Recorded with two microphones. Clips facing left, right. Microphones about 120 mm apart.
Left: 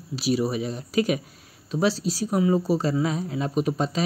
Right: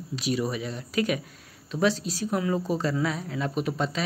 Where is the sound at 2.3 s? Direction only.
15° left (ahead or behind).